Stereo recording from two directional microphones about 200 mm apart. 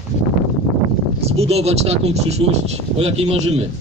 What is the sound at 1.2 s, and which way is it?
Speech, 30° right (ahead or behind).